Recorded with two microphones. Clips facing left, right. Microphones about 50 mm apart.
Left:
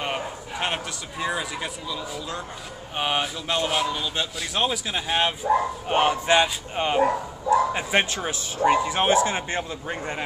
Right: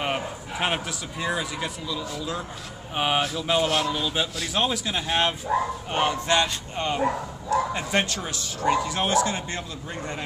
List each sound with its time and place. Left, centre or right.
0.0 s a sound: centre
1.2 s a man's voice: centre
5.9 s speech: centre